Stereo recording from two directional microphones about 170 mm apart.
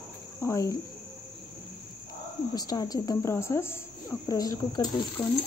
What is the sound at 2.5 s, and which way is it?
Speech, 25° left (ahead or behind).